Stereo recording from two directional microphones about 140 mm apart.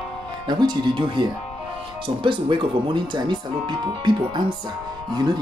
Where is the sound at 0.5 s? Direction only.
30° right (ahead or behind).